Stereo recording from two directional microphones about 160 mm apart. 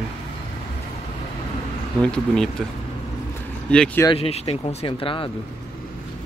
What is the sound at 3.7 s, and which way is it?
Speech, 5° left (ahead or behind).